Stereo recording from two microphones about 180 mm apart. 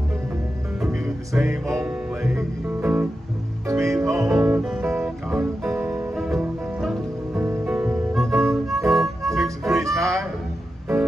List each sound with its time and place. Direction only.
0.7 s music: 5° right (ahead or behind)
9.8 s music: 15° right (ahead or behind)